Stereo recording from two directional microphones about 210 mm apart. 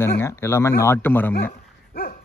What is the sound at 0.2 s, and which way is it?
Speech, 10° left (ahead or behind).